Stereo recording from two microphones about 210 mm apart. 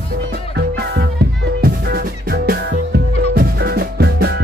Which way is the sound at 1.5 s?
50° right (ahead or behind).